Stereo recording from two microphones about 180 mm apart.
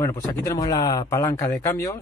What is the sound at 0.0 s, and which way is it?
Speech, 15° left (ahead or behind).